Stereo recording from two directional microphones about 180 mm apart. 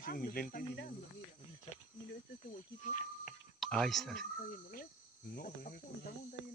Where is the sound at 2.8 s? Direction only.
45° left (ahead or behind).